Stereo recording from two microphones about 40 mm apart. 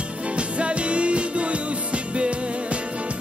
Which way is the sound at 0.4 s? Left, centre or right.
Right.